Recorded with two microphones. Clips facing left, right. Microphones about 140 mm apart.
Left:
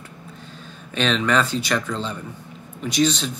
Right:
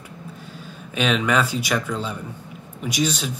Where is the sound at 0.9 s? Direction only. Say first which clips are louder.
Even; 10° right (ahead or behind).